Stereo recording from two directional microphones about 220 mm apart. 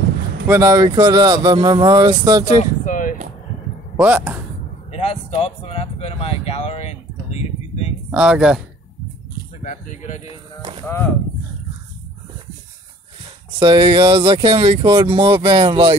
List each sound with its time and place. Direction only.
0.5 s speech: 15° right (ahead or behind)
2.6 s a sound: 35° left (ahead or behind)
3.9 s speech: 10° right (ahead or behind)
4.9 s a sound: 25° left (ahead or behind)
8.1 s speech: 5° right (ahead or behind)
9.6 s speech: 35° left (ahead or behind)
13.6 s speech: 25° right (ahead or behind)